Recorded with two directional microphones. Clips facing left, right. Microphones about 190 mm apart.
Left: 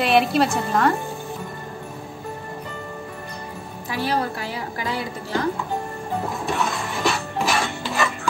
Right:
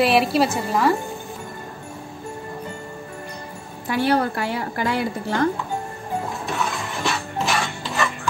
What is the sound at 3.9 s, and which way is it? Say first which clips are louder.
A woman's voice: right 4 dB; 60° right (ahead or behind).